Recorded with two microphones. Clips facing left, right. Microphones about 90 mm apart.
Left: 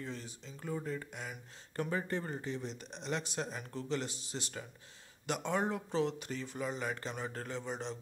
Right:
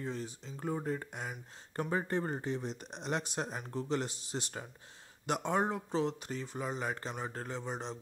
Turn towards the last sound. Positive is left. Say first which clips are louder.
# even
turn(degrees=-40)  # may be behind; listen again after turning